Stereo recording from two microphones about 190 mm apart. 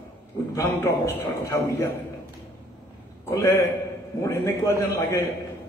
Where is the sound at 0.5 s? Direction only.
15° left (ahead or behind).